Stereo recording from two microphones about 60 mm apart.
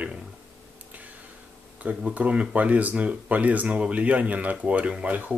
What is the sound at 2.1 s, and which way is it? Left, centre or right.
Speech, right.